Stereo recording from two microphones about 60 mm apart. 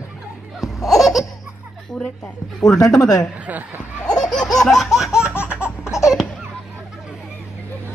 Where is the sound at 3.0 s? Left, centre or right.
Left.